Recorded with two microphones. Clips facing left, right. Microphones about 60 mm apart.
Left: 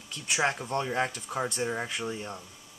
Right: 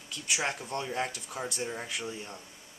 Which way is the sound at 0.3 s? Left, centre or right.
Left.